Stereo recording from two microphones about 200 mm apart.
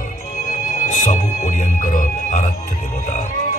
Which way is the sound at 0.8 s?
40° left (ahead or behind).